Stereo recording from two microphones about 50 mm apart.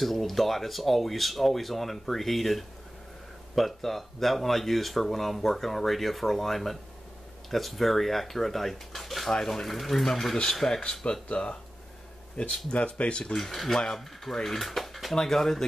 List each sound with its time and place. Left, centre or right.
0.0 s speech: centre; by 13.2 s left
13.2 s speech: centre